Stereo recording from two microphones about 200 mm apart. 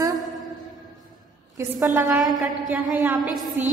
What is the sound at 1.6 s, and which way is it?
A woman's voice, 10° right (ahead or behind).